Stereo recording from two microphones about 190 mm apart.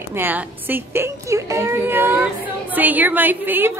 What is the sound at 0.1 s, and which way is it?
A woman's voice, 10° right (ahead or behind).